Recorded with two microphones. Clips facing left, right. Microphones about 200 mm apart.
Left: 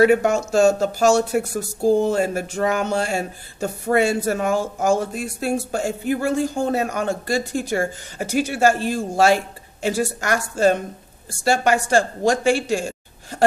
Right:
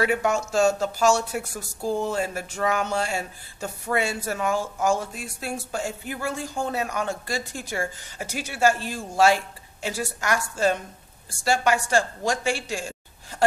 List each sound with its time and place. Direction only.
0.0 s speech: 50° left (ahead or behind)